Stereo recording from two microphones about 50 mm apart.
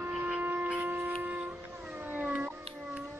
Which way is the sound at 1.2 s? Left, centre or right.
Right.